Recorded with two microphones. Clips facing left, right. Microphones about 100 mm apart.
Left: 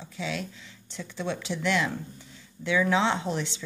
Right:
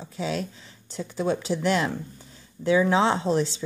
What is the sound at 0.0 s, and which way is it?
Speech, 35° right (ahead or behind).